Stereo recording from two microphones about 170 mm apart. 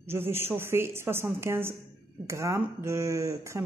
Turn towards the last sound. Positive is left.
turn(degrees=-20)  # may be behind; listen again after turning